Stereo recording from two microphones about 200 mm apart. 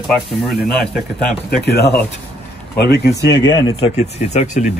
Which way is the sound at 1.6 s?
55° left (ahead or behind).